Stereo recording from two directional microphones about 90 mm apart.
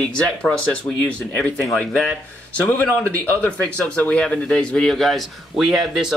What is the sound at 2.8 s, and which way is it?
A man's voice, 15° left (ahead or behind).